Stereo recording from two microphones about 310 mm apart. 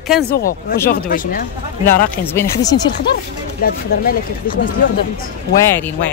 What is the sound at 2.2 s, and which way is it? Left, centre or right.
Speech, centre.